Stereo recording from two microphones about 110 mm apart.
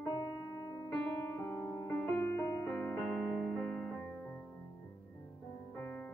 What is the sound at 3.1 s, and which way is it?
Music, centre (ahead or behind).